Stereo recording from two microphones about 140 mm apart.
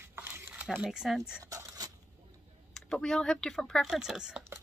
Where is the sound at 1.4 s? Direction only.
25° right (ahead or behind).